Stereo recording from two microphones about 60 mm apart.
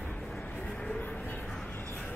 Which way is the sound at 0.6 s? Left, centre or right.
Centre.